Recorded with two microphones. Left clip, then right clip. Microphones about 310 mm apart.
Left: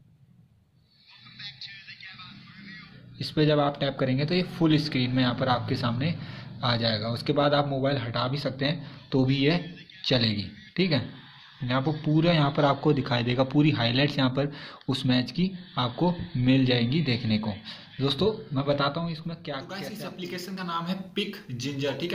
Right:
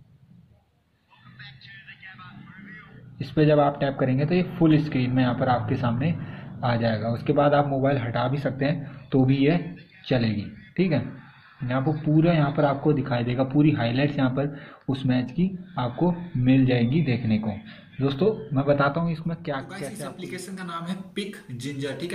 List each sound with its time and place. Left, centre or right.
1.4 s vehicle: centre
3.2 s a man's voice: centre